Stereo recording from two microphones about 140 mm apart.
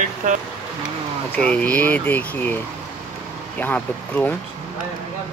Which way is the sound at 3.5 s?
10° left (ahead or behind).